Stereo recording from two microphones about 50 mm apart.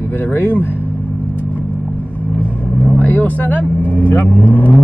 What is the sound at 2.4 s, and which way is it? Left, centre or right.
Vehicle, left.